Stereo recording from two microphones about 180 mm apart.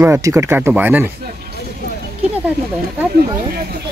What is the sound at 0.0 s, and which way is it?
Speech, 15° right (ahead or behind).